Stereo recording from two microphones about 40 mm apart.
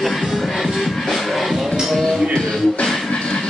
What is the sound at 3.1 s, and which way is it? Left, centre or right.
Train, left.